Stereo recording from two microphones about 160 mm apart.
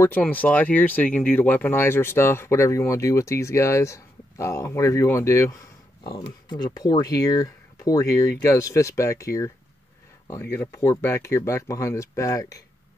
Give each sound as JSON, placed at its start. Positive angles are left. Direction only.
{"t": 0.0, "sound": "speech", "side_deg": 10}